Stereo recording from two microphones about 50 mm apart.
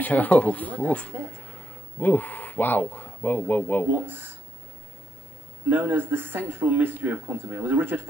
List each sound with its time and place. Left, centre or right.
0.0 s speech: left
4.1 s speech: right
5.7 s speech: right